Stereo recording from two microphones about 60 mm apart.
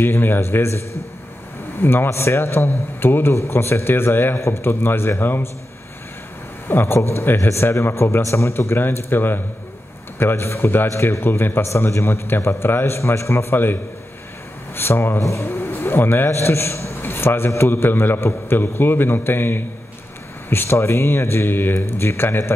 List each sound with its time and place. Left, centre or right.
0.0 s a man's voice: left
6.7 s a man's voice: left
14.8 s a man's voice: left